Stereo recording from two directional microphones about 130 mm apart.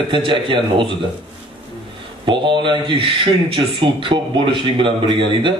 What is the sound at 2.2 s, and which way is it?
Speech, 40° right (ahead or behind).